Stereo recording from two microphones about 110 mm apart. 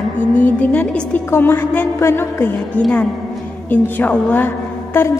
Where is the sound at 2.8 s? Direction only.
10° left (ahead or behind).